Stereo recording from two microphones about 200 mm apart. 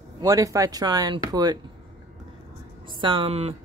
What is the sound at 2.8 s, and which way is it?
Speech, 25° right (ahead or behind).